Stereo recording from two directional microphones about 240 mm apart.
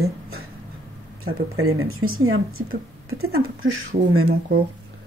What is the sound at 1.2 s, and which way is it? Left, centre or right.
Speech, right.